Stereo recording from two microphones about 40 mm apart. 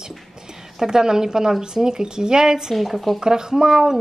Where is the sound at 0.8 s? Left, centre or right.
Centre.